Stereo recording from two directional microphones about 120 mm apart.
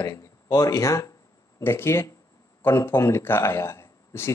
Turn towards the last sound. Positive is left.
turn(degrees=20)  # may be behind; listen again after turning